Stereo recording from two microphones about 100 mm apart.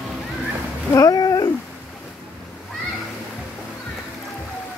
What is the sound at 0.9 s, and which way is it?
Cat, 35° left (ahead or behind).